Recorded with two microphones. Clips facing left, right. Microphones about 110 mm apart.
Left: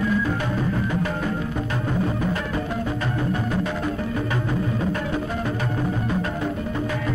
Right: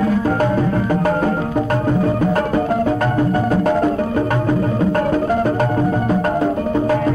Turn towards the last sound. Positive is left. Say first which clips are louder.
# right 10 dB
turn(degrees=-50)  # may be behind; listen again after turning